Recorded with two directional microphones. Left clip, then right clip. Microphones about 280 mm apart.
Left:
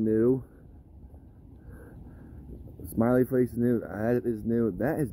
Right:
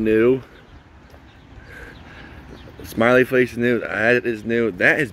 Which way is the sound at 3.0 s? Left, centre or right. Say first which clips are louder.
Right 10 dB; centre.